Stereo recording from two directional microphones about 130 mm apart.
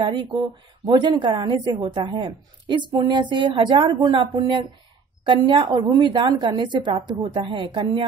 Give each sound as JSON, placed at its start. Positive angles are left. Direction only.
{"t": 0.0, "sound": "a woman's voice", "side_deg": -40}